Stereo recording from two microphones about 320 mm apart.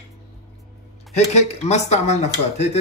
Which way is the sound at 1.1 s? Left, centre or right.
Left.